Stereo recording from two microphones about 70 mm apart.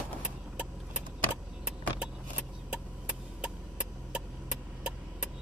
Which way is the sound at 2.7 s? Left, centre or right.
Centre.